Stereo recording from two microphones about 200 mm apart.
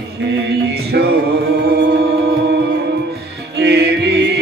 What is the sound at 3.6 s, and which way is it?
Music, 55° right (ahead or behind).